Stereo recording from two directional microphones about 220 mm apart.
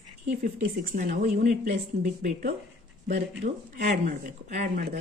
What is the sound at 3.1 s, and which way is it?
A woman's voice, 45° right (ahead or behind).